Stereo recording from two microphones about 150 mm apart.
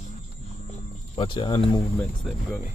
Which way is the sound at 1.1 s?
35° left (ahead or behind).